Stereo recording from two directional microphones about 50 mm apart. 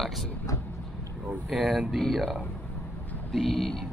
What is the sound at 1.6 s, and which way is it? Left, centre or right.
Speech, right.